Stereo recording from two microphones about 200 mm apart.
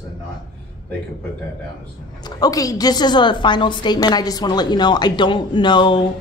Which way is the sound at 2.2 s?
20° left (ahead or behind).